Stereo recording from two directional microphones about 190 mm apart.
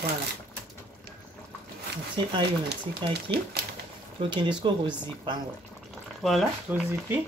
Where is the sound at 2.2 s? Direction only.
25° right (ahead or behind).